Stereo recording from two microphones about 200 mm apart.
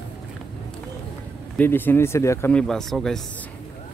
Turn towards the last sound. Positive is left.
turn(degrees=0)  # may be behind; listen again after turning